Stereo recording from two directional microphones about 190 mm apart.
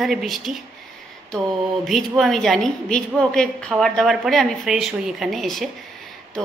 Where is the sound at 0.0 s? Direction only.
Centre (ahead or behind).